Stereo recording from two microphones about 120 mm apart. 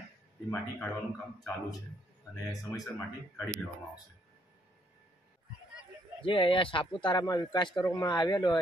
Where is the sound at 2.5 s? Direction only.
30° left (ahead or behind).